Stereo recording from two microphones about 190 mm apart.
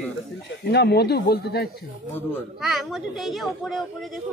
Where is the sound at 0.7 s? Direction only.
60° left (ahead or behind).